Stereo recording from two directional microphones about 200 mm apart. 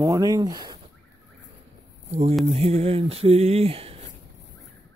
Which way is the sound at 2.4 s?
30° right (ahead or behind).